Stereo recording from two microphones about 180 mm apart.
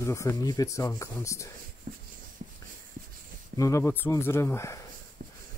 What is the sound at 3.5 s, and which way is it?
Speech, 15° left (ahead or behind).